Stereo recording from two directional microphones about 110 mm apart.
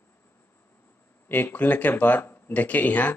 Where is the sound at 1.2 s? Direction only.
15° left (ahead or behind).